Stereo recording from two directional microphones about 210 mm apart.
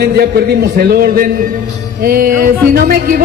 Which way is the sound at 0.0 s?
50° right (ahead or behind).